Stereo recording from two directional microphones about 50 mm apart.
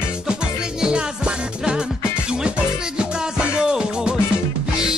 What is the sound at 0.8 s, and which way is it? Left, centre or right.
Music, centre.